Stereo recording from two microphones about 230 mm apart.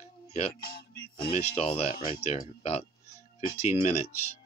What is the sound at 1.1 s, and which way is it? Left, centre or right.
Speech, left.